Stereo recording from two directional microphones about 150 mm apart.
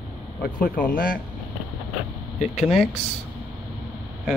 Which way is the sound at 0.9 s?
70° left (ahead or behind).